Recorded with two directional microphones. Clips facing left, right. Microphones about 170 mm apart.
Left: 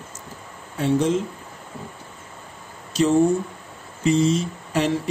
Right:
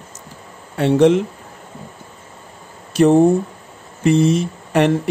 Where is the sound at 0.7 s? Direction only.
70° right (ahead or behind).